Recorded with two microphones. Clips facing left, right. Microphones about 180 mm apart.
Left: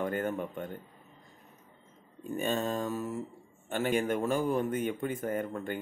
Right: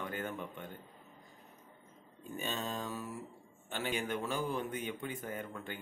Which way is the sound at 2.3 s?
50° left (ahead or behind).